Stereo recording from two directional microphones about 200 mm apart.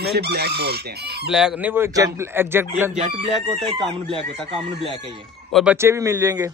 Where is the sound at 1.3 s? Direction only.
5° right (ahead or behind).